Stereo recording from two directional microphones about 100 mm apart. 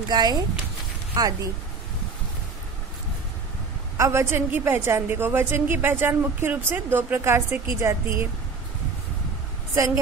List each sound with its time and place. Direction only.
0.1 s a woman's voice: 45° right (ahead or behind)
4.0 s a woman's voice: 25° right (ahead or behind)